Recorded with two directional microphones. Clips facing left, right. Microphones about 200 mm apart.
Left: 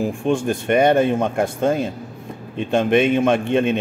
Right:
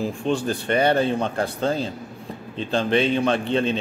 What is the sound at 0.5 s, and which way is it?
A man's voice, 20° left (ahead or behind).